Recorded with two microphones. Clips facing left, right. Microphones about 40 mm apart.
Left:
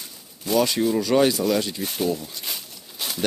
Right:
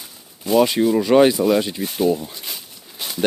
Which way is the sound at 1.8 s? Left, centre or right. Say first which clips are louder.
Right 5 dB; centre.